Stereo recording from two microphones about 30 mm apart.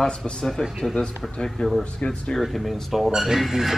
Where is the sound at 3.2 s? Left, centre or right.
Centre.